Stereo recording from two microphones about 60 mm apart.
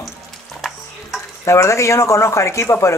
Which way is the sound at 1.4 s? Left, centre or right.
Left.